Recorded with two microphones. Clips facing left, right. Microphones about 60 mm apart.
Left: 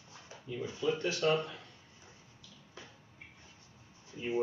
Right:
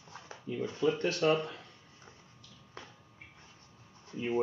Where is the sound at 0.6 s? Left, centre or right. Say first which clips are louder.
Right 3 dB; right.